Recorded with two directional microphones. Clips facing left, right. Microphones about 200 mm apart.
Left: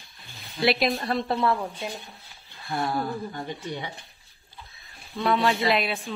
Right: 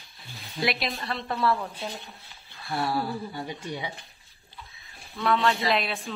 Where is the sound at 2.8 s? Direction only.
5° right (ahead or behind).